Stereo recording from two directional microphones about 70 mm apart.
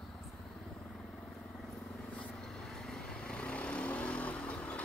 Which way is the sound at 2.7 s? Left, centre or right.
Centre.